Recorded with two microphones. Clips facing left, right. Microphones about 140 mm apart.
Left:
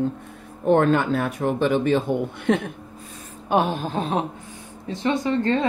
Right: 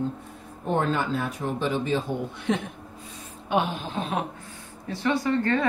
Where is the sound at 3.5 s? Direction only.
45° left (ahead or behind).